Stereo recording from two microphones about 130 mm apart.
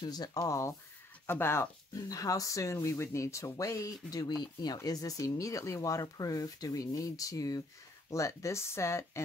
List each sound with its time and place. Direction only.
0.0 s speech: 30° left (ahead or behind)